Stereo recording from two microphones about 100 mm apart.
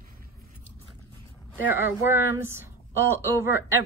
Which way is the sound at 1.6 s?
20° right (ahead or behind).